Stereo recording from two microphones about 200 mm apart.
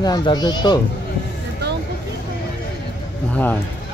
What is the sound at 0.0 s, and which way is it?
Speech, 20° left (ahead or behind).